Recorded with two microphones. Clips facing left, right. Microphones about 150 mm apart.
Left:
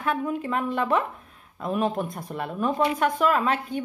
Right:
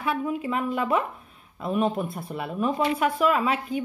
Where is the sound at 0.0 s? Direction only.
5° right (ahead or behind).